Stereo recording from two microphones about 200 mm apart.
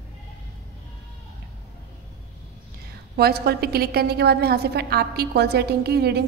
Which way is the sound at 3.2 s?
55° right (ahead or behind).